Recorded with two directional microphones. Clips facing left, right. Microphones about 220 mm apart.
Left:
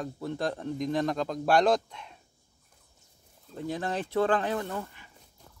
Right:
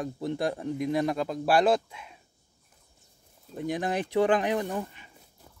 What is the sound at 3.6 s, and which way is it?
Speech, 15° right (ahead or behind).